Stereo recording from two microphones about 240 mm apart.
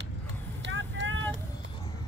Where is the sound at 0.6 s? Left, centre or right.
Right.